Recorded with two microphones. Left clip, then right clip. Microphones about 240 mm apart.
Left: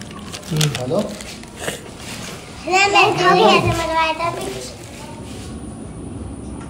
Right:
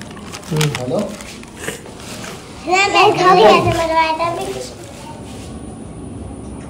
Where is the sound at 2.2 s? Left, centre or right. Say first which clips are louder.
Right 3 dB; centre.